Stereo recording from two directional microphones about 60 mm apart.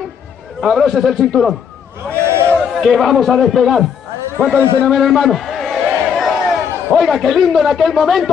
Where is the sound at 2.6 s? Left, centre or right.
Centre.